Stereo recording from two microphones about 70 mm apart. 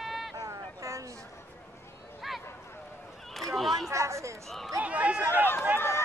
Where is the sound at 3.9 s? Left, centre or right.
Right.